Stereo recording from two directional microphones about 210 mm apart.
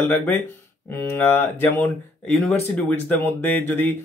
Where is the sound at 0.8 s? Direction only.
10° left (ahead or behind).